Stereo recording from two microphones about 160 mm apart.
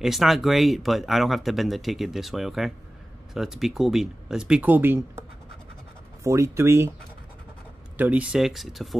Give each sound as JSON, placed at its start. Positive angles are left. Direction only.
{"t": 0.0, "sound": "speech", "side_deg": 0}
{"t": 6.2, "sound": "speech", "side_deg": -20}
{"t": 8.0, "sound": "speech", "side_deg": -10}